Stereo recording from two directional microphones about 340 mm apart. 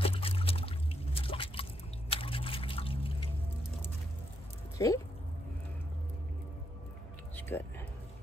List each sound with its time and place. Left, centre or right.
0.0 s a sound: centre
4.7 s speech: centre
7.3 s music: centre